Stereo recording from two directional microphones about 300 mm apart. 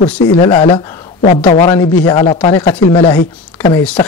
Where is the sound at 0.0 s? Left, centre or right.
Centre.